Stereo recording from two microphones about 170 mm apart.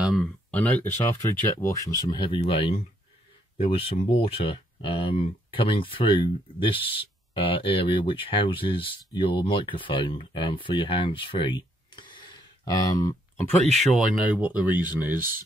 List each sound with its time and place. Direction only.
0.5 s speech: 10° left (ahead or behind)
13.7 s speech: centre (ahead or behind)